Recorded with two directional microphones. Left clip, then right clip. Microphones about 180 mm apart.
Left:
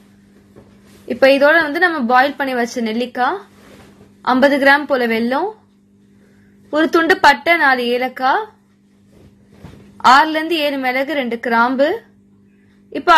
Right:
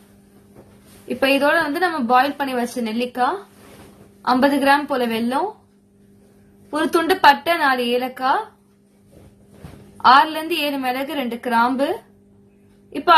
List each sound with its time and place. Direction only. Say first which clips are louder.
1.0 s a woman's voice: left 6 dB; 15° left (ahead or behind)
6.7 s a woman's voice: left 5 dB; 15° left (ahead or behind)
10.0 s a woman's voice: left 3 dB; 15° left (ahead or behind)